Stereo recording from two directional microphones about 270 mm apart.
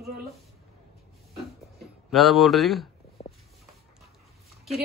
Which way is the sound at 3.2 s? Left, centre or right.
Left.